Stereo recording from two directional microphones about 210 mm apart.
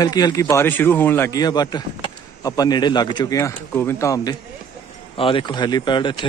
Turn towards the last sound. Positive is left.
turn(degrees=20)  # may be behind; listen again after turning